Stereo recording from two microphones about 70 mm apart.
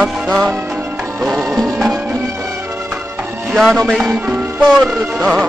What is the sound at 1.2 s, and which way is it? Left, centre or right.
Music, centre.